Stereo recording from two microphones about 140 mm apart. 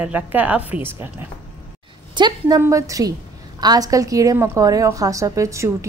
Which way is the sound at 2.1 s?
30° right (ahead or behind).